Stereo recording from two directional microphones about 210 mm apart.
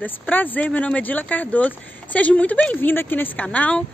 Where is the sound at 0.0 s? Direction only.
10° left (ahead or behind).